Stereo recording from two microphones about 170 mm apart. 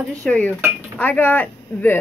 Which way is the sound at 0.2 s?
10° left (ahead or behind).